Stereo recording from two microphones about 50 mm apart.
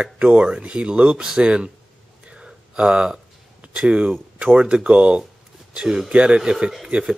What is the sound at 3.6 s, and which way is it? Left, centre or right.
Speech, right.